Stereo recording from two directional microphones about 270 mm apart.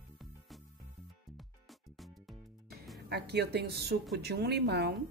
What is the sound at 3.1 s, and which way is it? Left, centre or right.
Speech, right.